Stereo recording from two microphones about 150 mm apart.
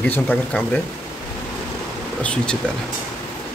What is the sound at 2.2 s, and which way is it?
Speech, 5° left (ahead or behind).